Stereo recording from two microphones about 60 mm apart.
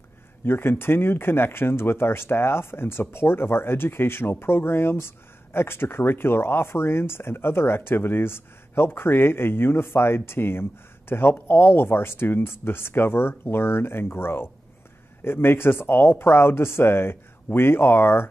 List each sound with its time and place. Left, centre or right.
0.5 s speech: left